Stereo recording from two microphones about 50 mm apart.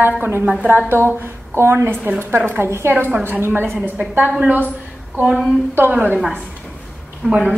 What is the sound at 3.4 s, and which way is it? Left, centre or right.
Speech, right.